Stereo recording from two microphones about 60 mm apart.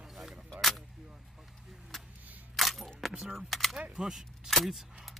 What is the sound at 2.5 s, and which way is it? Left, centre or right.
Single-lens reflex camera, centre.